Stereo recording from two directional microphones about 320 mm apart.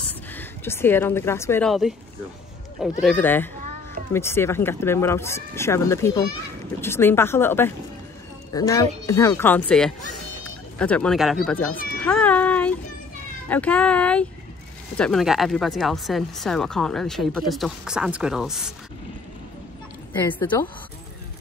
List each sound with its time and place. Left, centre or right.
0.3 s a woman's voice: centre
12.0 s cat: centre
13.5 s speech: centre
20.1 s speech: centre